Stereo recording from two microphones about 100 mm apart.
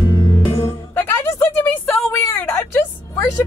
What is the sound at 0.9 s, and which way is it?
A woman's voice, 25° left (ahead or behind).